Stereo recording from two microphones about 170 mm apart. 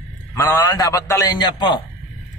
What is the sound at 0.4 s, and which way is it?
A man's voice, 15° left (ahead or behind).